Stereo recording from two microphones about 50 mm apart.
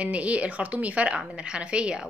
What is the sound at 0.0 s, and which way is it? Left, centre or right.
A woman's voice, right.